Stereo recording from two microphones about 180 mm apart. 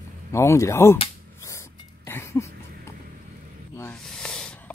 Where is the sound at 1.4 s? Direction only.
15° left (ahead or behind).